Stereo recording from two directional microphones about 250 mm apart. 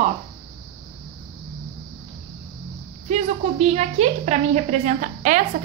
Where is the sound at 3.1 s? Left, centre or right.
Right.